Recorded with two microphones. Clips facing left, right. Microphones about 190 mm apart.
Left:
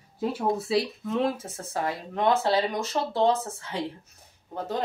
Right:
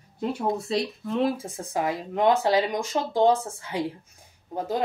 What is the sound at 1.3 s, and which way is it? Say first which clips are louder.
Speech: right 3 dB; 15° right (ahead or behind).